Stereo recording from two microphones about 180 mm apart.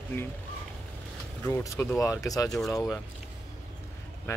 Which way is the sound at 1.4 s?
15° left (ahead or behind).